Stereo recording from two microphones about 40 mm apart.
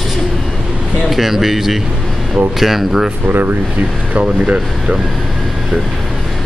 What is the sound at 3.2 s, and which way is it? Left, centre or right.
Speech, right.